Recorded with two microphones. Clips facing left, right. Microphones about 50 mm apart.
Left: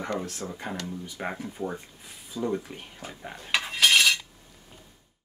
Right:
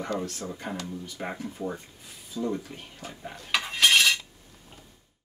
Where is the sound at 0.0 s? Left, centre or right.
Left.